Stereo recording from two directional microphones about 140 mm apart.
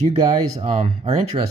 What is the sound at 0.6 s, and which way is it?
Speech, 50° right (ahead or behind).